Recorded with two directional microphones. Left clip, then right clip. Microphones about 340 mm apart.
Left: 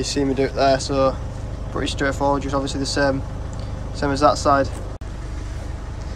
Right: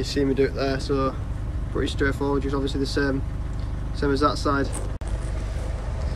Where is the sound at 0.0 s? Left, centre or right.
Centre.